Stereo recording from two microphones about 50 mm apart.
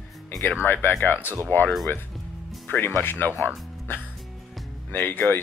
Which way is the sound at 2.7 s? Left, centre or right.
Left.